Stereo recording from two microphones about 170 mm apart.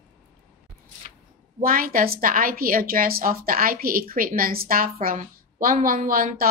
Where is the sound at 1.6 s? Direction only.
55° right (ahead or behind).